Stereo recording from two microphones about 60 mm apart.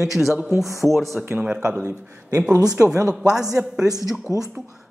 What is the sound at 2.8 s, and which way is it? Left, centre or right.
Speech, right.